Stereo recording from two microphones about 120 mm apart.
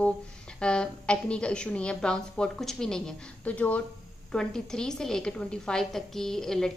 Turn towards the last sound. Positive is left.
turn(degrees=5)  # may be behind; listen again after turning